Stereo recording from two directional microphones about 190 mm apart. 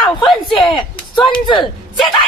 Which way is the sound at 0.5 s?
25° left (ahead or behind).